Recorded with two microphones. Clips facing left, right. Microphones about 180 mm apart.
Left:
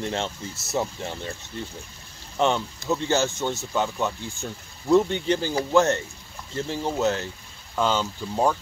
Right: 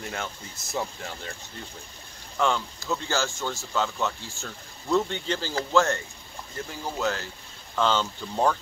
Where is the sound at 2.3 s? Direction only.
20° left (ahead or behind).